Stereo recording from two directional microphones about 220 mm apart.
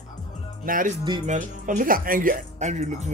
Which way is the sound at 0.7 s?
40° right (ahead or behind).